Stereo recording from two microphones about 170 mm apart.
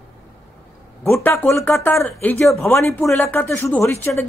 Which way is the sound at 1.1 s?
15° left (ahead or behind).